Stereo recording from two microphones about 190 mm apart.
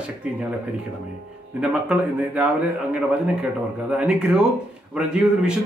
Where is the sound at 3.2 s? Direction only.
5° right (ahead or behind).